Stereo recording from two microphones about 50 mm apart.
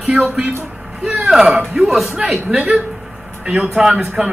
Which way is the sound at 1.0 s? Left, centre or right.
Centre.